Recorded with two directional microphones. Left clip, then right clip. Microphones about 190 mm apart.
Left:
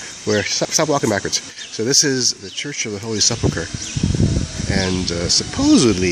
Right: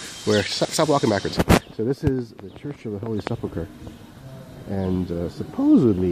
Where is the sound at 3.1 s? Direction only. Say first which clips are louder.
Left 14 dB; 20° left (ahead or behind).